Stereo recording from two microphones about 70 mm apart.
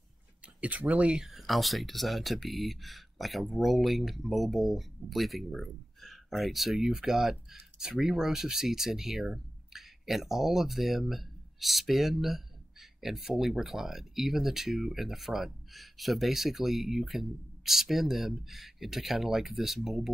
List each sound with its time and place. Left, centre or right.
0.6 s speech: right
1.2 s speech: centre